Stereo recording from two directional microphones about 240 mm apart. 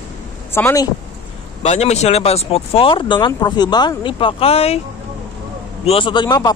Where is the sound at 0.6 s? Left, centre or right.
Centre.